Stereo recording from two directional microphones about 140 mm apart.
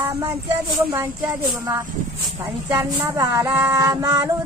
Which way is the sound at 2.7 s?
20° right (ahead or behind).